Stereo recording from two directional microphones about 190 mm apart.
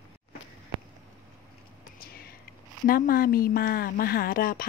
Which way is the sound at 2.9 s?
50° left (ahead or behind).